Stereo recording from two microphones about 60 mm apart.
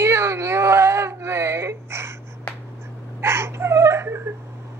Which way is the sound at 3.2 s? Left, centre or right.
Right.